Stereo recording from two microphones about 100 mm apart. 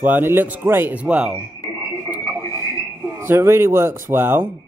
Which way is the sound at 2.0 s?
20° right (ahead or behind).